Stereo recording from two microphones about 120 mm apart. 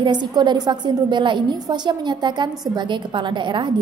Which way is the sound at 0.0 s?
40° right (ahead or behind).